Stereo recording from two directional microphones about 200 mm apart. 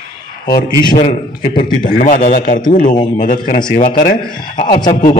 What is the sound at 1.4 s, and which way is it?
A man's voice, 45° left (ahead or behind).